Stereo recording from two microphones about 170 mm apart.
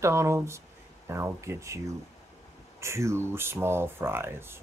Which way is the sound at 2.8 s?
15° right (ahead or behind).